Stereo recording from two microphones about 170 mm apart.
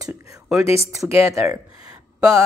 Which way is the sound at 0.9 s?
20° right (ahead or behind).